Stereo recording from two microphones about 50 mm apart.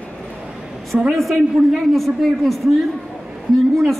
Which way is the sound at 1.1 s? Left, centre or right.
Centre.